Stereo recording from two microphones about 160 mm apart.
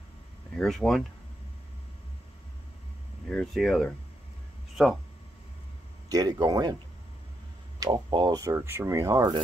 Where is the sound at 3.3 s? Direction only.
5° left (ahead or behind).